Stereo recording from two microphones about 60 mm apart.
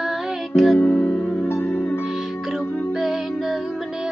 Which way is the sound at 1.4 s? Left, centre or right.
Left.